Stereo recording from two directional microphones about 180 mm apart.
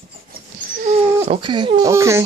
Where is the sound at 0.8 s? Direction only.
35° right (ahead or behind); by 2.2 s 15° right (ahead or behind).